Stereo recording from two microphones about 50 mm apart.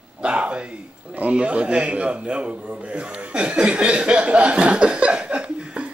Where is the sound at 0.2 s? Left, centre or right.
Right.